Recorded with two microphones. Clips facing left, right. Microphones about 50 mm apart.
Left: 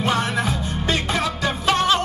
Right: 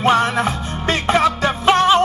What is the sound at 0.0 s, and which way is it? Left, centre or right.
Music, right.